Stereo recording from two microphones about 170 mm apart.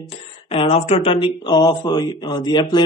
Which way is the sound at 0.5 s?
35° left (ahead or behind).